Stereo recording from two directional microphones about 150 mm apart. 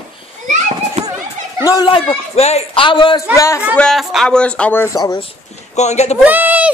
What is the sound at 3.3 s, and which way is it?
Speech, 20° left (ahead or behind).